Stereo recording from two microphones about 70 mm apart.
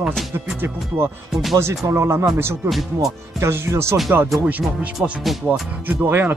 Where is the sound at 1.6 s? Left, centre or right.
Right.